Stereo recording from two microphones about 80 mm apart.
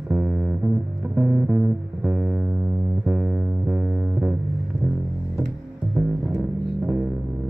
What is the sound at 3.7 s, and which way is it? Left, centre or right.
Music, centre.